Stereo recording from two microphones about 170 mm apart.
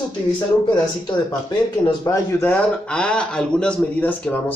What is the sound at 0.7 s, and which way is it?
Speech, 25° left (ahead or behind).